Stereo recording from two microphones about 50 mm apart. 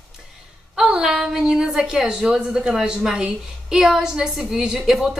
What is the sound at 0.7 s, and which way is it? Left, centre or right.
A woman's voice, centre.